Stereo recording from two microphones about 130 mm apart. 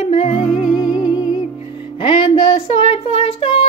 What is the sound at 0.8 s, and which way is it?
Music, 30° left (ahead or behind).